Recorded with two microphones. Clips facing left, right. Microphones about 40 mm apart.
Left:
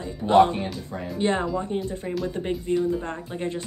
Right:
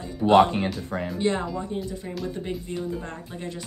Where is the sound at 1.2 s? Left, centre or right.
Left.